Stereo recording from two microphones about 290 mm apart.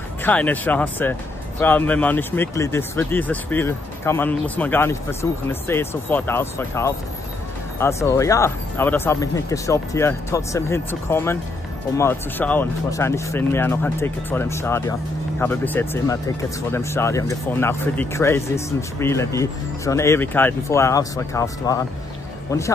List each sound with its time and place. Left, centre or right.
0.2 s speech: centre